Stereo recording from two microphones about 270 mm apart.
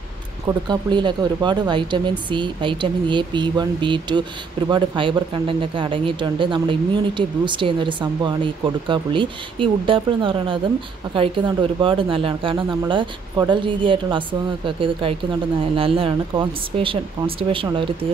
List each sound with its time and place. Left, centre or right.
0.5 s speech: centre